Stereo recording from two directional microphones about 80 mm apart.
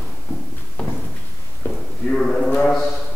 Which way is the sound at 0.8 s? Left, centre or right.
Centre.